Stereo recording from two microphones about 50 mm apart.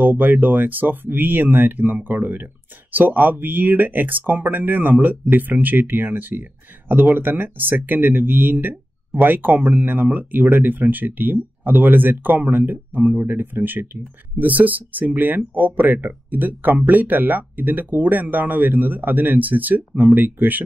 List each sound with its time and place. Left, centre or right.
0.0 s speech: right